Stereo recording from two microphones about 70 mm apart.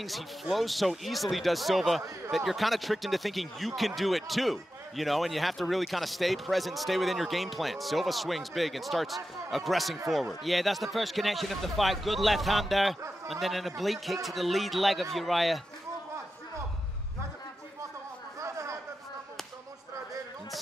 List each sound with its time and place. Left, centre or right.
0.0 s speech: centre
18.4 s chatter: right